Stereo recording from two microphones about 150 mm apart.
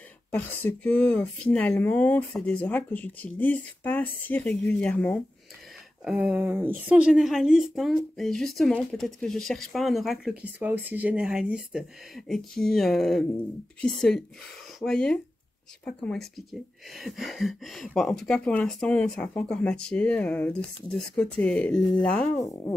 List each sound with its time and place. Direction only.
0.3 s speech: 15° left (ahead or behind)
6.0 s a woman's voice: 5° right (ahead or behind); by 22.3 s 10° left (ahead or behind)
22.4 s a woman's voice: 25° left (ahead or behind)